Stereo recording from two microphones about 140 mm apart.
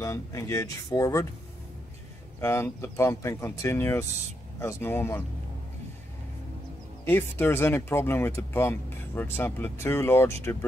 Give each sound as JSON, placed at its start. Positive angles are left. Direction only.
{"t": 0.0, "sound": "speech", "side_deg": 25}
{"t": 2.4, "sound": "speech", "side_deg": 15}
{"t": 7.1, "sound": "speech", "side_deg": 15}